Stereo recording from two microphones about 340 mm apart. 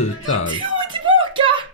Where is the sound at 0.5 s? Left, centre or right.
Centre.